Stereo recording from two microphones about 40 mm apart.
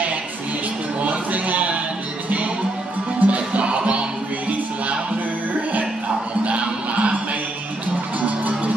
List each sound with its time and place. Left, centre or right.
1.0 s music: right
3.2 s music: right
6.4 s music: right
8.2 s music: right